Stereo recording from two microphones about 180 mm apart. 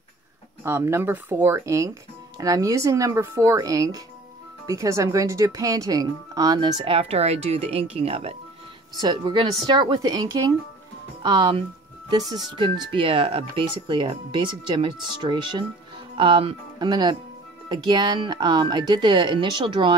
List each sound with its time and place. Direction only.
0.7 s speech: 15° right (ahead or behind)